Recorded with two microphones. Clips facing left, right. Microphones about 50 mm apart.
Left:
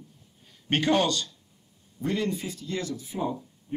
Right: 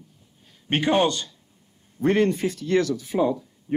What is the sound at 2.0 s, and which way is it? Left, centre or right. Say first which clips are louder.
Speech: right 8 dB; right.